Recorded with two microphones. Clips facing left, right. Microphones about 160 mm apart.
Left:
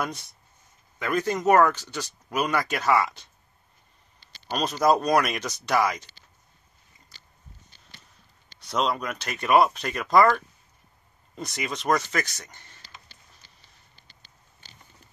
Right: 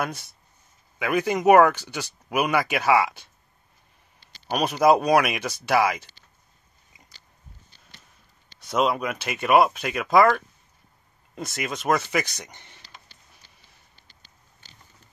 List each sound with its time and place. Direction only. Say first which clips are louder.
0.9 s speech: right 2 dB; 10° right (ahead or behind)
4.5 s speech: right 3 dB; 10° right (ahead or behind)
8.6 s speech: right 3 dB; 5° right (ahead or behind)